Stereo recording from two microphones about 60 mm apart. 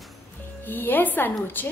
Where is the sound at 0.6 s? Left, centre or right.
Left.